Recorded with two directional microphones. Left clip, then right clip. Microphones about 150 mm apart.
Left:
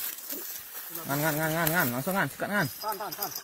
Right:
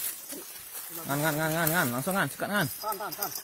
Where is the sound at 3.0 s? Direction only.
10° right (ahead or behind).